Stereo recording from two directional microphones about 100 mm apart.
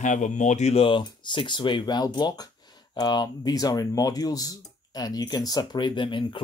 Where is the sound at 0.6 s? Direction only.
80° left.